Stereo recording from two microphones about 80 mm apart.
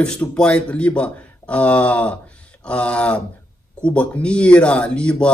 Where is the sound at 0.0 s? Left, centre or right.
Centre.